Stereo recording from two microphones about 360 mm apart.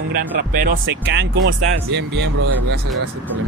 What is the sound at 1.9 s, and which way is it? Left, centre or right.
Speech, right.